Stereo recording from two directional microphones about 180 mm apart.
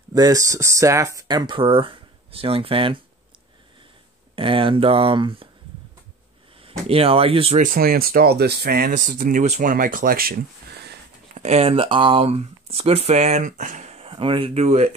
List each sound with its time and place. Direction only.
0.1 s speech: 20° right (ahead or behind)
4.4 s speech: 30° right (ahead or behind)
6.6 s speech: 30° right (ahead or behind)
7.5 s speech: 50° right (ahead or behind)
11.3 s speech: 35° right (ahead or behind)